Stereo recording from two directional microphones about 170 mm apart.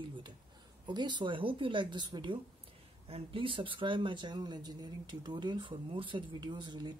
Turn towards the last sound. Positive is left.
turn(degrees=-25)  # may be behind; listen again after turning